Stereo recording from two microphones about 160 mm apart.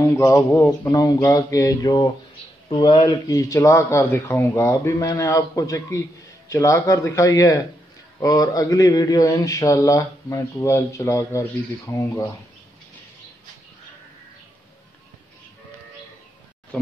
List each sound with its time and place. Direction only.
0.2 s speech: 20° left (ahead or behind)